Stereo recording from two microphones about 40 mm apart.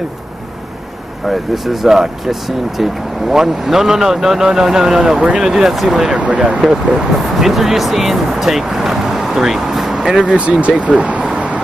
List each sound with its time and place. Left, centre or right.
1.2 s speech: centre
6.1 s speech: right
6.6 s speech: centre
9.9 s vehicle: centre
10.2 s speech: right
11.3 s vehicle: right